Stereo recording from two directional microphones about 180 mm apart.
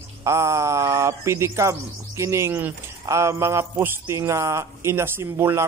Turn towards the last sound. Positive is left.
turn(degrees=-15)  # may be behind; listen again after turning